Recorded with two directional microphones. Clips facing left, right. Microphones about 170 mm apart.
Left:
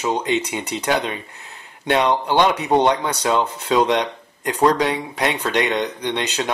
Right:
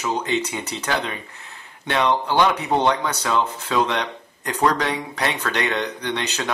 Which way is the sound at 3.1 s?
30° left (ahead or behind).